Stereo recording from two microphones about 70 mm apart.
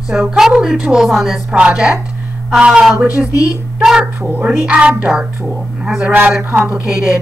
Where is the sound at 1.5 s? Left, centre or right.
Centre.